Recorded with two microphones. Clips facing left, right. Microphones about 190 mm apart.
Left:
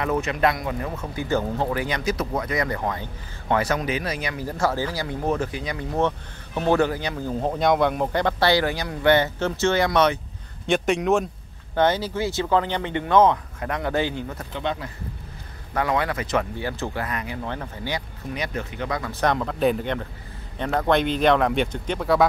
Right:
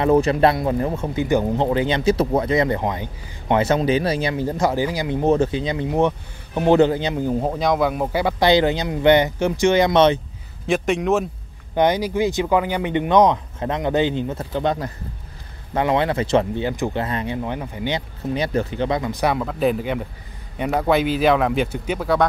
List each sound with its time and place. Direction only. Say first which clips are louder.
0.0 s speech: right 7 dB; 30° right (ahead or behind)
10.7 s speech: right 1 dB; centre (ahead or behind)
11.7 s speech: right 3 dB; 15° right (ahead or behind)
14.5 s speech: right 6 dB; 40° right (ahead or behind)
15.7 s speech: right 4 dB; 25° right (ahead or behind)
17.4 s speech: right 5 dB; 15° right (ahead or behind)